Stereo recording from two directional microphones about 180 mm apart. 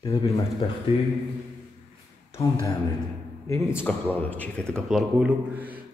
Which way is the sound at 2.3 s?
15° left (ahead or behind).